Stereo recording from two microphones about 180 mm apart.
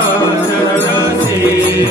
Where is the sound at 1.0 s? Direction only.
15° right (ahead or behind).